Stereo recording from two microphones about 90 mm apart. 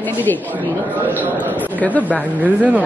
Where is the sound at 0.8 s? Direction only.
20° right (ahead or behind).